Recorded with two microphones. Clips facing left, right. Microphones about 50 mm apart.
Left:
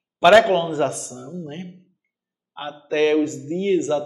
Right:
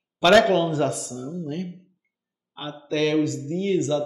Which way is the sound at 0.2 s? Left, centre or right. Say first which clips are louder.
Left 3 dB; centre.